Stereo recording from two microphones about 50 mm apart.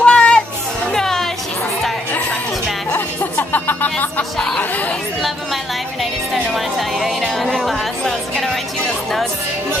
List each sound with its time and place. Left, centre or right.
0.0 s children playing: left
0.9 s music: centre
3.2 s music: left
4.2 s speech: centre
4.6 s speech: left
6.3 s speech: centre
7.2 s music: centre